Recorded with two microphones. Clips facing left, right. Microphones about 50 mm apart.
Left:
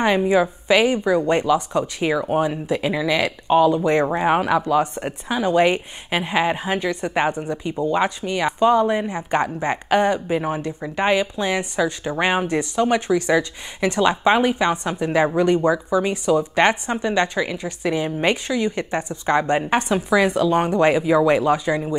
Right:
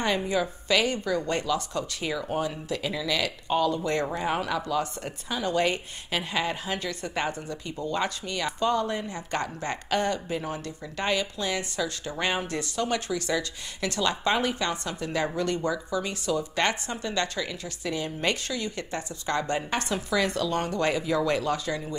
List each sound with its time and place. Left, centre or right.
0.0 s a woman's voice: left